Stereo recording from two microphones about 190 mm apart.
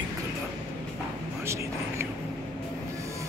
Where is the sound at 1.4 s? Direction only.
15° right (ahead or behind).